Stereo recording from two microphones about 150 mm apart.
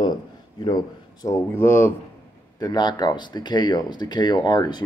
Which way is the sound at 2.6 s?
30° left (ahead or behind).